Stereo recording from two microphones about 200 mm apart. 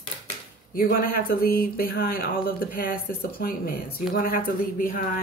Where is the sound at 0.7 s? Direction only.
50° left (ahead or behind).